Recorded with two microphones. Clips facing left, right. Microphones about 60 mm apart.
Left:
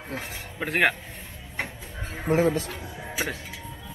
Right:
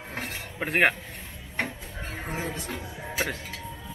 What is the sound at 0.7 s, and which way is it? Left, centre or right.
Speech, right.